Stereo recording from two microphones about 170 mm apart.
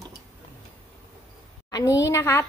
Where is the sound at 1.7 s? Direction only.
20° left (ahead or behind).